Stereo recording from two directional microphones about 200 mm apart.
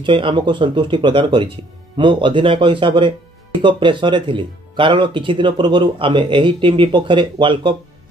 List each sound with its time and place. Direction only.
0.0 s speech: 25° right (ahead or behind)